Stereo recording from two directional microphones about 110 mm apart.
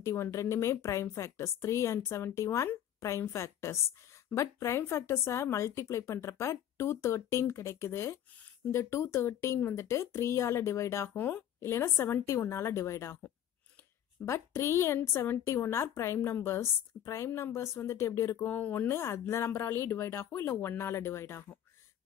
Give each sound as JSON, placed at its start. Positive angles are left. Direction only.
{"t": 0.0, "sound": "speech", "side_deg": 30}
{"t": 14.2, "sound": "speech", "side_deg": 25}